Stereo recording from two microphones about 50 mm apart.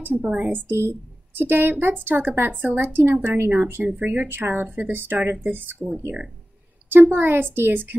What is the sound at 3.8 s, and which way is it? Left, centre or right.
Speech, right.